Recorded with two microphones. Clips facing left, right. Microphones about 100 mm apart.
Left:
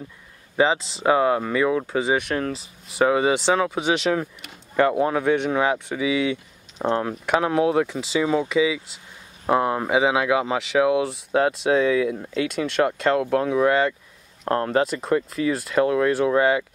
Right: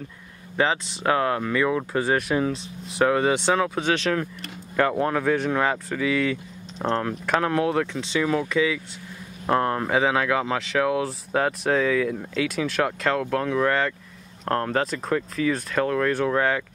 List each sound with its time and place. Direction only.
1.0 s speech: 10° left (ahead or behind)
8.2 s speech: 20° left (ahead or behind)
8.5 s speech: 5° left (ahead or behind)